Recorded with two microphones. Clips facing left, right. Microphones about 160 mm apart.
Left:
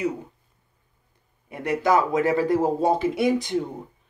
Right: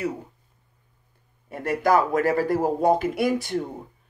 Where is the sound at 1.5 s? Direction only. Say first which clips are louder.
Even; 15° left (ahead or behind).